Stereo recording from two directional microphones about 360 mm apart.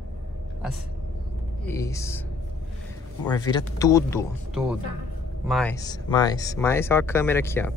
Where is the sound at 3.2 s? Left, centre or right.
Centre.